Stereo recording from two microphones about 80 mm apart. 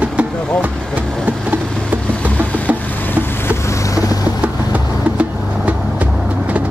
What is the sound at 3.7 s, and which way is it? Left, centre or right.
Vehicle, left.